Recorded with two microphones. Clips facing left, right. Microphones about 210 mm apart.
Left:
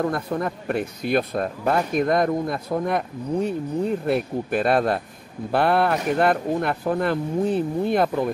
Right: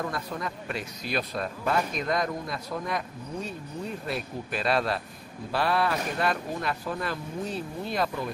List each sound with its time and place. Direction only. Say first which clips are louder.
0.0 s speech: left 8 dB; 55° left (ahead or behind)